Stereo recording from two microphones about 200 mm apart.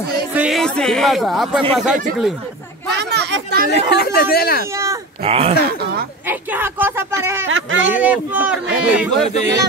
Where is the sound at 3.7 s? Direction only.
50° left (ahead or behind).